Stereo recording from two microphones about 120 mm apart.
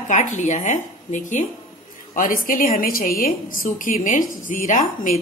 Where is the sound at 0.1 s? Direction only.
90° left.